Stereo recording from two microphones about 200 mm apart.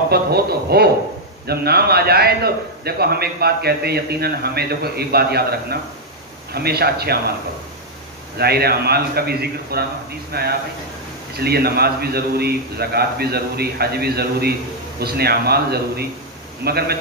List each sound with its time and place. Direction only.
0.1 s a man's voice: 50° right (ahead or behind)
8.4 s a man's voice: 50° right (ahead or behind)